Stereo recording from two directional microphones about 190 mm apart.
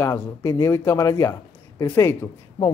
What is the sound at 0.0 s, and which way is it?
Speech, 15° left (ahead or behind).